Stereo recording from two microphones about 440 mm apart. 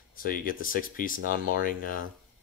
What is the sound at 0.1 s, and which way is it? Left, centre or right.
Speech, centre.